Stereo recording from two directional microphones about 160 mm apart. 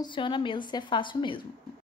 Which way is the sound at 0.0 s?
30° left (ahead or behind).